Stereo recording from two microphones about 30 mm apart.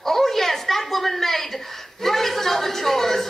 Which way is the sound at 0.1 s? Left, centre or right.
Centre.